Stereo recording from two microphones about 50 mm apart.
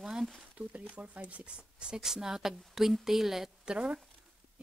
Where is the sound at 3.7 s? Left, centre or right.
Right.